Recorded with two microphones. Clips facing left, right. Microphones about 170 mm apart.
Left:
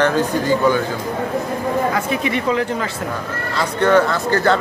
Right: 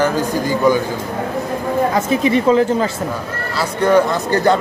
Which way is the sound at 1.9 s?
35° right (ahead or behind).